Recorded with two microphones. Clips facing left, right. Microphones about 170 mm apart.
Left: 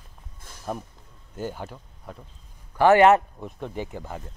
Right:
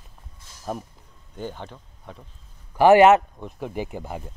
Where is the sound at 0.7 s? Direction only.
Centre (ahead or behind).